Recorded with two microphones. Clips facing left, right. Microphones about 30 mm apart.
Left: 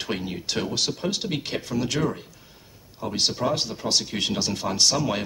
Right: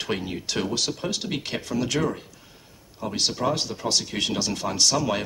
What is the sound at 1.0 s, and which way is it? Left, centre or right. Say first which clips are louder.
Speech: left 1 dB; left.